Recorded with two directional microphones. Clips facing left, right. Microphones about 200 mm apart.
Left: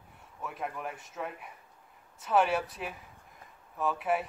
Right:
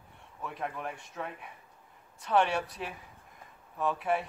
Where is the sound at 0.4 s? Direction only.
Centre (ahead or behind).